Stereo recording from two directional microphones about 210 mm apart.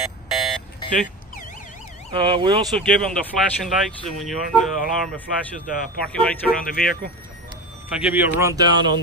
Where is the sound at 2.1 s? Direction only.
20° right (ahead or behind).